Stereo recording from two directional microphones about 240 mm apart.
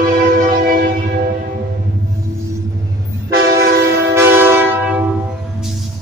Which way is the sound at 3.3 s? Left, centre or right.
Right.